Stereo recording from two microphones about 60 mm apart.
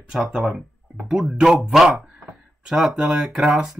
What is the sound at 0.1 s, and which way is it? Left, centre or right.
Speech, centre.